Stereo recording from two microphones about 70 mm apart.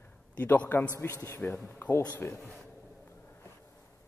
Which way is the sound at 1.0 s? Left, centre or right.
Left.